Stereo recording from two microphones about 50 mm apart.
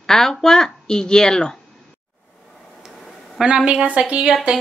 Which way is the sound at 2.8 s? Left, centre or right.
Centre.